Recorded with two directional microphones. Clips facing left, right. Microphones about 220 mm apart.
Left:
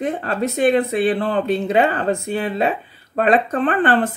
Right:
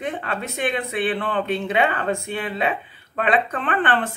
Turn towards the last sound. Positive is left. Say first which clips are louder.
# left 5 dB
turn(degrees=40)  # may be behind; listen again after turning